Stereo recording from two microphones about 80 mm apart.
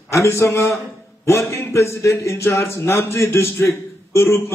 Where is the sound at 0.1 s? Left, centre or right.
Left.